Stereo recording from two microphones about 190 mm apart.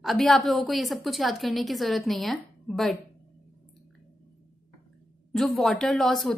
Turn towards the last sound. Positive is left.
turn(degrees=0)  # may be behind; listen again after turning